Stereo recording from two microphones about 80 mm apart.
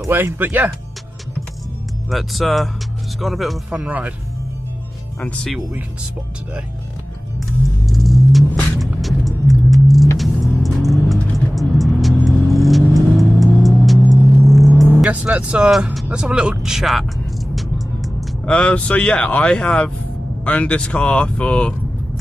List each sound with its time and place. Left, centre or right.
0.0 s speech: right
2.0 s speech: centre
3.7 s speech: centre
5.2 s speech: centre
7.3 s car: centre
8.7 s music: centre
10.1 s vehicle: centre
12.5 s music: centre
14.1 s a sound: centre
15.0 s speech: centre
15.7 s speech: centre
16.1 s speech: centre
17.6 s music: centre
18.4 s speech: centre